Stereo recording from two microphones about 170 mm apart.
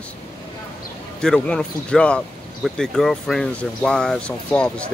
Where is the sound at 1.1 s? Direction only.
5° left (ahead or behind).